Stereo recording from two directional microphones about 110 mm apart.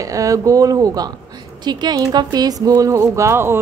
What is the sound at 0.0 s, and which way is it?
A woman's voice, 30° right (ahead or behind).